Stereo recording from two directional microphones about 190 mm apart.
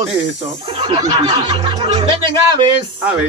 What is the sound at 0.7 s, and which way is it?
Speech, 30° right (ahead or behind).